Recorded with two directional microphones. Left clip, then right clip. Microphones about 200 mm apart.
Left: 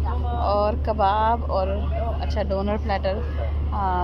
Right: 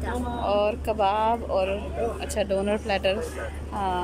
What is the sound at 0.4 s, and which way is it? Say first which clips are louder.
Speech: left 2 dB; 15° right (ahead or behind).